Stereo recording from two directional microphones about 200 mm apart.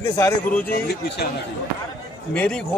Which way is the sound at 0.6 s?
50° left (ahead or behind).